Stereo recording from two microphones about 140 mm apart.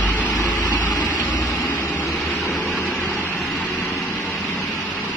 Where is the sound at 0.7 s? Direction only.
30° left (ahead or behind).